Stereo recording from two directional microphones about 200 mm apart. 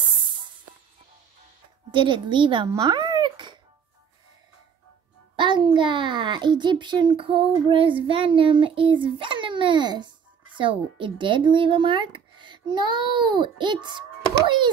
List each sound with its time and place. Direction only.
0.0 s music: 25° right (ahead or behind)
1.9 s a child's voice: 25° right (ahead or behind)
5.3 s a child's voice: 25° right (ahead or behind)